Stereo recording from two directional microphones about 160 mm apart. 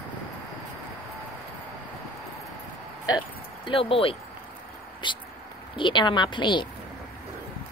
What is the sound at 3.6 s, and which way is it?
Speech, 35° left (ahead or behind).